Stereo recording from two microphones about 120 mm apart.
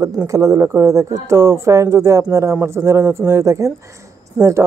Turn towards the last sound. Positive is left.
turn(degrees=-10)  # may be behind; listen again after turning